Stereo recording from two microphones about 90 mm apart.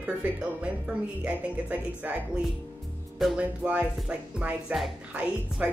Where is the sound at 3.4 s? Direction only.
15° right (ahead or behind).